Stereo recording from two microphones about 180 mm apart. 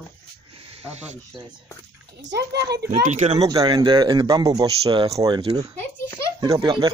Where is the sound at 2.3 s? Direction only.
70° right (ahead or behind).